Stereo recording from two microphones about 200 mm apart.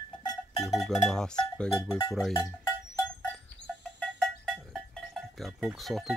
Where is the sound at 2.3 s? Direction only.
15° left (ahead or behind).